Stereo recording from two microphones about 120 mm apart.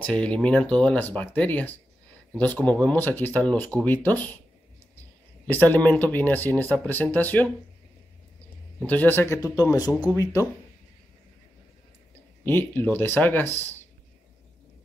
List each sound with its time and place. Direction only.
0.0 s speech: 10° left (ahead or behind)
5.5 s speech: 15° left (ahead or behind)
8.7 s speech: 15° left (ahead or behind)
9.7 s speech: 30° left (ahead or behind)
12.4 s speech: 15° left (ahead or behind)